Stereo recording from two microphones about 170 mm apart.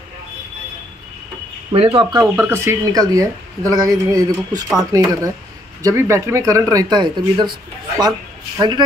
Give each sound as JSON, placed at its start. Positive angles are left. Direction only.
{"t": 1.7, "sound": "speech", "side_deg": -30}
{"t": 8.5, "sound": "speech", "side_deg": -25}